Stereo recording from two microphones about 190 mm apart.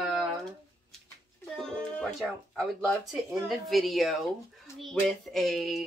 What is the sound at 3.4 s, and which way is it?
Speech, centre (ahead or behind).